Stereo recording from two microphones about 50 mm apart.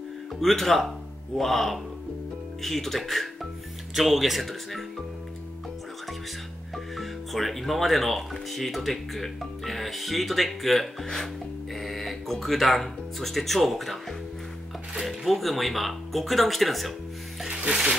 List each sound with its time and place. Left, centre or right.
0.4 s speech: centre
7.0 s speech: centre
15.0 s speech: centre
17.5 s music: centre